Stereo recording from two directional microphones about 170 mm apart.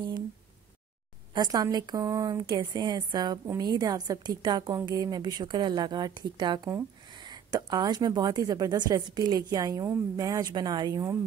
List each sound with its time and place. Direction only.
1.3 s speech: 25° right (ahead or behind)